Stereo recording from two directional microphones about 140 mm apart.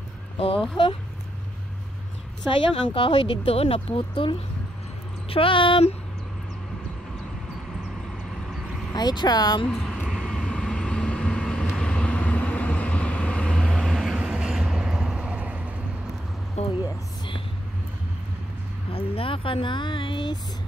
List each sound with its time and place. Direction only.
0.8 s speech: 35° left (ahead or behind)
2.4 s speech: 35° left (ahead or behind)
8.9 s speech: 30° left (ahead or behind)
9.7 s vehicle: centre (ahead or behind)
16.6 s a sound: 50° left (ahead or behind)
18.9 s speech: 40° left (ahead or behind)